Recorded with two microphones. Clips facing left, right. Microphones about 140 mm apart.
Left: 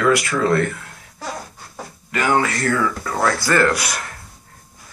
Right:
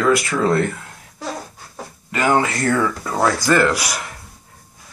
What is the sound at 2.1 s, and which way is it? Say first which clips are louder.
Speech: right 1 dB; 25° right (ahead or behind).